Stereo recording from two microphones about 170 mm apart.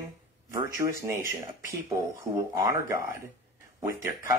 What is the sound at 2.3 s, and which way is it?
Speech, 20° right (ahead or behind).